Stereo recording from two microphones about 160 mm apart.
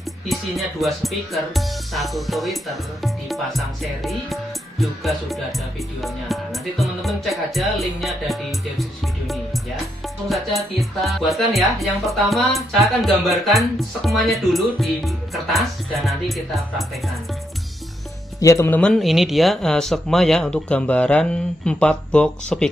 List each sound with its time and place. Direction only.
0.3 s speech: centre (ahead or behind)
10.0 s music: centre (ahead or behind)
10.8 s speech: centre (ahead or behind)
18.4 s speech: 20° left (ahead or behind)
18.8 s speech: centre (ahead or behind)